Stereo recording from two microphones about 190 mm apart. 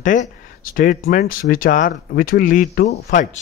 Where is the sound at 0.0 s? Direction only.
40° left (ahead or behind).